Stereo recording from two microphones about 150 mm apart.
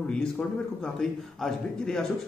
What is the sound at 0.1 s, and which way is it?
A man's voice, 5° left (ahead or behind).